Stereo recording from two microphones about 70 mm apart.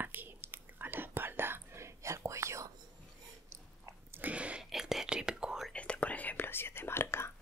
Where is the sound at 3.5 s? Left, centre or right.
Right.